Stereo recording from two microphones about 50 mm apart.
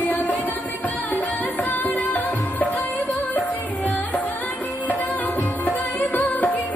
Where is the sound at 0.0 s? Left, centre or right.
Left.